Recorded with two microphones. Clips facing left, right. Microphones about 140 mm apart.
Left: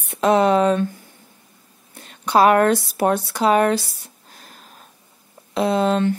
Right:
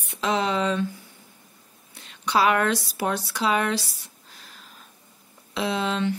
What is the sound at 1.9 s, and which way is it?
Speech, 50° left (ahead or behind).